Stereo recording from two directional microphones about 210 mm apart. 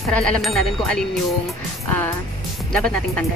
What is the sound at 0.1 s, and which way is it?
Speech, 5° left (ahead or behind).